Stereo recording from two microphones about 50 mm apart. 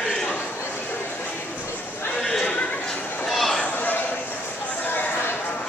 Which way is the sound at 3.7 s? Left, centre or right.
Left.